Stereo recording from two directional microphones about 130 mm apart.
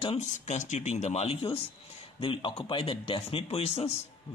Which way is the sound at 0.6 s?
65° left (ahead or behind).